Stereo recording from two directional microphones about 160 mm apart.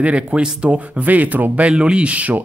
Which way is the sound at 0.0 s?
5° right (ahead or behind).